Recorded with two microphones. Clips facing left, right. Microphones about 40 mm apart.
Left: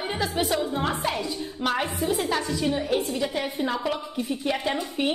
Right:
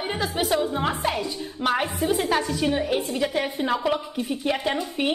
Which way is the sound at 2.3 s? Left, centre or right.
Right.